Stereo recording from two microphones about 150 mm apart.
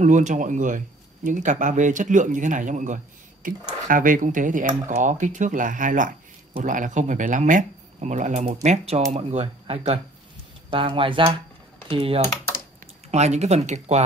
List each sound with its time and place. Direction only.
0.0 s speech: 55° right (ahead or behind)